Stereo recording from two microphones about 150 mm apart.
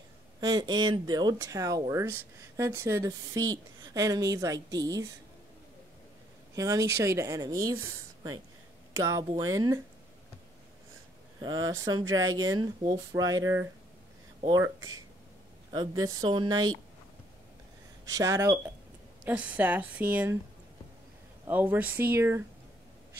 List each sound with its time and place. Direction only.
0.4 s speech: 25° right (ahead or behind)
6.5 s speech: 20° right (ahead or behind)
11.4 s speech: 25° right (ahead or behind)
18.0 s a woman's voice: 20° right (ahead or behind)
21.5 s a woman's voice: 10° right (ahead or behind)